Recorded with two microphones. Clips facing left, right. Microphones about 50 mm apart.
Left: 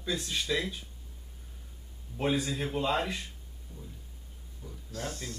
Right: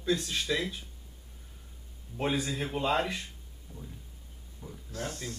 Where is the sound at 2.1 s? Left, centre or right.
Centre.